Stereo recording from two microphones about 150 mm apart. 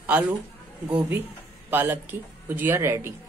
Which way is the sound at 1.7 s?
15° right (ahead or behind).